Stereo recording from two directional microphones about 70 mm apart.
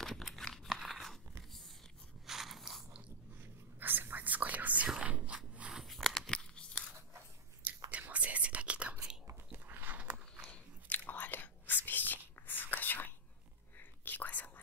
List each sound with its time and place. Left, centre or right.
0.0 s crumpling: centre
2.2 s biting: centre
3.8 s whispering: right
4.8 s a sound: centre
5.8 s a sound: centre
7.6 s whispering: right
9.3 s biting: right
10.5 s biting: left
13.7 s whispering: left